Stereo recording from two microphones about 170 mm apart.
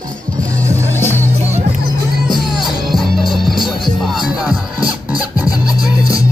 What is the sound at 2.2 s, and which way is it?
Music, centre (ahead or behind).